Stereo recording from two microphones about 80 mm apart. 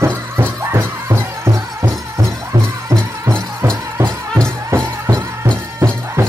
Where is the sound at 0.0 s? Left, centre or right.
Right.